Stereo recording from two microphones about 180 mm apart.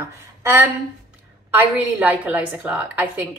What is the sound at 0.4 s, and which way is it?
A woman's voice, 15° right (ahead or behind).